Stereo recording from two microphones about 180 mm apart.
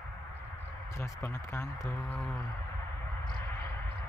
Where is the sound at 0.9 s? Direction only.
15° left (ahead or behind).